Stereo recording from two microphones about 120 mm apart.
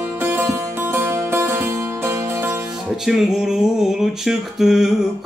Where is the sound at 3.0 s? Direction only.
5° right (ahead or behind).